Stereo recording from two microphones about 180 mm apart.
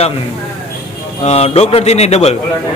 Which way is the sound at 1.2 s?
35° left (ahead or behind).